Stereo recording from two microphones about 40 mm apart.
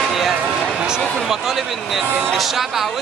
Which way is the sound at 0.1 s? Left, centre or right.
Centre.